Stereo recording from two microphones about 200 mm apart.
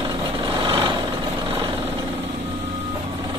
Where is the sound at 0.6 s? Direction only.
25° right (ahead or behind).